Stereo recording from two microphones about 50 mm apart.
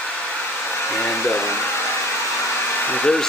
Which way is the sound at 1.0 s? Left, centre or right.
Left.